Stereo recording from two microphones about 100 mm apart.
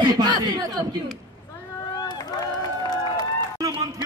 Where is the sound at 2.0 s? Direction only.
40° left (ahead or behind).